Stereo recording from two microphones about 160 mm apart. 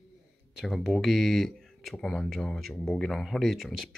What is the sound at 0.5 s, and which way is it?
Speech, centre (ahead or behind).